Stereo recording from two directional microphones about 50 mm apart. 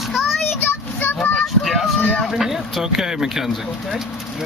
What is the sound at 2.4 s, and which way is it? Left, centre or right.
Speech, centre.